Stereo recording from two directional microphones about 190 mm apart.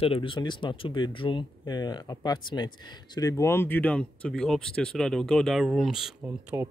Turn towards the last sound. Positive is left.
turn(degrees=-15)  # may be behind; listen again after turning